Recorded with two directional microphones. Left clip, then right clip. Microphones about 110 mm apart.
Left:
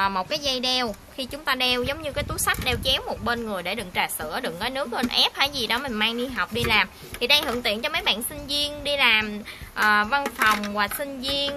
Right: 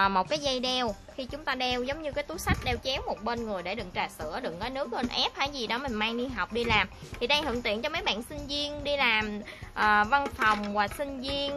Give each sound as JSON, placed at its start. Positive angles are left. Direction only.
{"t": 0.0, "sound": "a woman's voice", "side_deg": -35}
{"t": 1.4, "sound": "a woman's voice", "side_deg": -5}
{"t": 10.4, "sound": "a woman's voice", "side_deg": -15}